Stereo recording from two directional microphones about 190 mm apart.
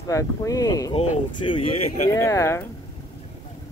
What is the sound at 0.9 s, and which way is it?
Speech, 30° left (ahead or behind).